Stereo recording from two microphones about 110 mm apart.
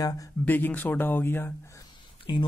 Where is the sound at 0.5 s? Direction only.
15° left (ahead or behind).